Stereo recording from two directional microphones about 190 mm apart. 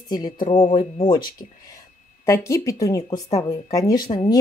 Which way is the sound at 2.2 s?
15° left (ahead or behind).